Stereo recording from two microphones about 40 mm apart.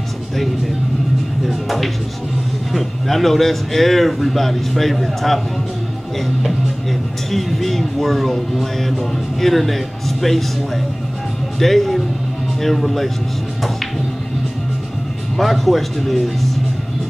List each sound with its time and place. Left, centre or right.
1.4 s speech: centre
11.6 s speech: centre
15.3 s speech: centre